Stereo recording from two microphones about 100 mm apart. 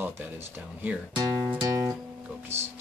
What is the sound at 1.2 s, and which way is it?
Speech, 40° right (ahead or behind).